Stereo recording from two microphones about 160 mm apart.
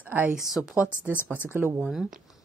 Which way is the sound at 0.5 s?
5° right (ahead or behind).